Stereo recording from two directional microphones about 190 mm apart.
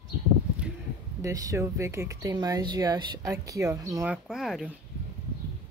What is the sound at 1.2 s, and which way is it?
Speech, 15° right (ahead or behind).